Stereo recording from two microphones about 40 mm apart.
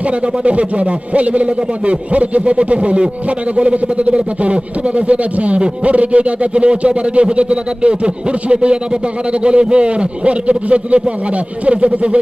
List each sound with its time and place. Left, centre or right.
0.4 s a man's voice: right